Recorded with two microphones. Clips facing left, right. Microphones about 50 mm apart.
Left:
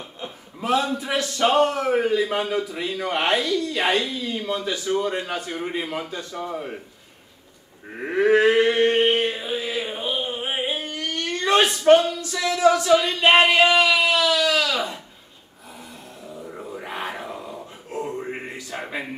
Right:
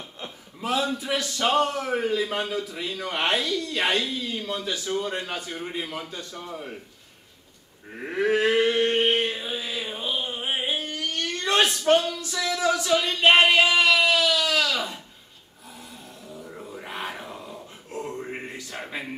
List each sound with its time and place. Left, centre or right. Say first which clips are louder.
0.6 s a man's voice: left 4 dB; centre
7.9 s livestock: left 5 dB; centre
11.8 s speech: left 6 dB; centre
12.4 s a sound: left 6 dB; centre
16.3 s music: left 4 dB; centre
16.8 s a sound: left 3 dB; centre
18.9 s a man's voice: left 2 dB; centre